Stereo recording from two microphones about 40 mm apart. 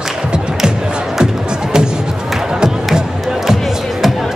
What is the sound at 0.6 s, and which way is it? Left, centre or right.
Music, centre.